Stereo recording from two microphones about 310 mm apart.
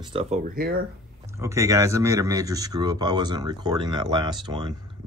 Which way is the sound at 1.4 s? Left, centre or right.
Centre.